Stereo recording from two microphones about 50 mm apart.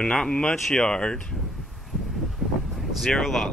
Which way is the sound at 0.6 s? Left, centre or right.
Centre.